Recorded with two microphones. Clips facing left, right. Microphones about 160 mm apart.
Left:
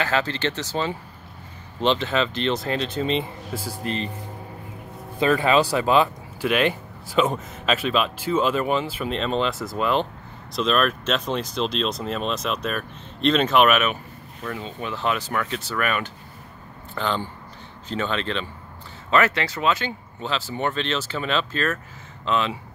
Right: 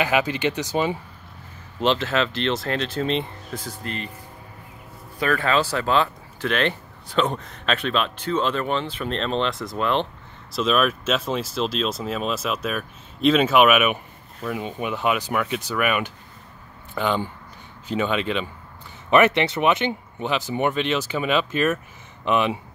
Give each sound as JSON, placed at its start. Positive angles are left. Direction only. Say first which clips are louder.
{"t": 0.0, "sound": "speech", "louder": "right 2 dB", "side_deg": -15}
{"t": 1.8, "sound": "speech", "louder": "even", "side_deg": 0}
{"t": 3.8, "sound": "speech", "louder": "left 6 dB", "side_deg": 25}
{"t": 5.2, "sound": "speech", "louder": "left 3 dB", "side_deg": 20}